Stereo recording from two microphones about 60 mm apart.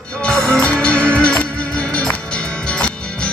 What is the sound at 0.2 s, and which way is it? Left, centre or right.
Music, centre.